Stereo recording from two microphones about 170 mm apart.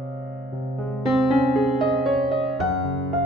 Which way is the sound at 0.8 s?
Centre (ahead or behind).